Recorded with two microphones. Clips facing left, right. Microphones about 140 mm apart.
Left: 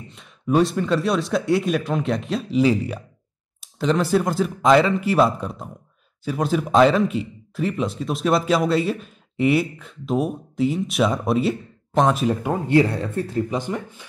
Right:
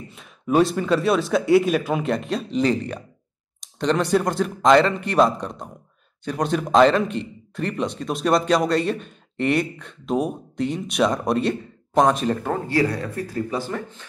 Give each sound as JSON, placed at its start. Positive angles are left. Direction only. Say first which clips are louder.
{"t": 0.1, "sound": "speech", "louder": "even", "side_deg": 0}
{"t": 12.6, "sound": "speech", "louder": "left 6 dB", "side_deg": 20}